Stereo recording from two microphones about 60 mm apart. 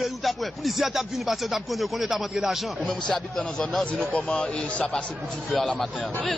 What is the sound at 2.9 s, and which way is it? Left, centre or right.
A man's voice, centre.